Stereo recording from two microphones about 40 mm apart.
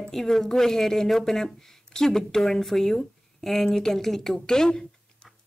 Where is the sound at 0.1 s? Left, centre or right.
Centre.